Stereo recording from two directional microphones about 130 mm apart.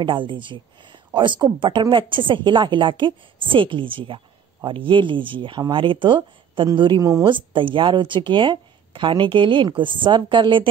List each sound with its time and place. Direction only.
0.0 s speech: 40° right (ahead or behind)
7.0 s a woman's voice: 25° right (ahead or behind)
7.2 s speech: 40° right (ahead or behind)